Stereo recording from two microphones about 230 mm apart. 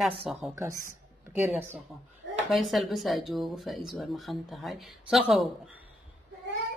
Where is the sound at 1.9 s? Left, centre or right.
Centre.